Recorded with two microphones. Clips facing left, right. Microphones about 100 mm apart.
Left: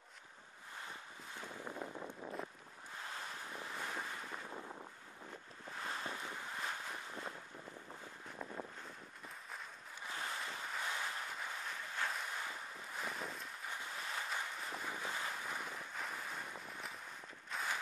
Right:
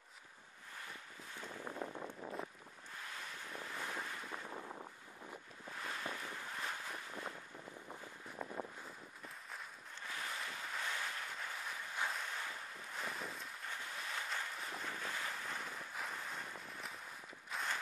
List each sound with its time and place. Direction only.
1.7 s wind noise: 10° right (ahead or behind)
3.8 s waves: 5° left (ahead or behind)
4.5 s boat: 10° right (ahead or behind)
5.8 s boat: 25° left (ahead or behind); by 7.3 s 5° left (ahead or behind)
10.0 s ocean: 25° left (ahead or behind)
10.3 s boat: centre (ahead or behind)
10.8 s vehicle: 15° left (ahead or behind)
11.3 s vehicle: centre (ahead or behind)
12.2 s boat: 5° left (ahead or behind)
13.7 s boat: 10° left (ahead or behind)
14.9 s boat: 15° left (ahead or behind)
15.2 s wind noise: 5° left (ahead or behind)
17.5 s walk: centre (ahead or behind)